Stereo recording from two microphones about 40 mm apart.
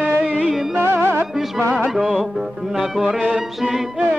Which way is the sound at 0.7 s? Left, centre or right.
Right.